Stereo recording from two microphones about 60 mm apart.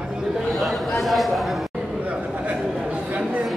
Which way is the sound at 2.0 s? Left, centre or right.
Right.